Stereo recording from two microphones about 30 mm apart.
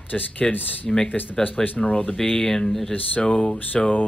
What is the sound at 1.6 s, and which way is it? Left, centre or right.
Speech, left.